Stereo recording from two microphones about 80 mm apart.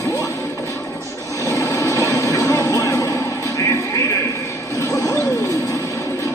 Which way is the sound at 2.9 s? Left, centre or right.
Left.